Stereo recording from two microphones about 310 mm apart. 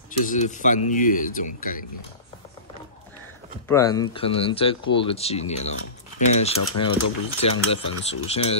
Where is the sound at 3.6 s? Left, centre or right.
Centre.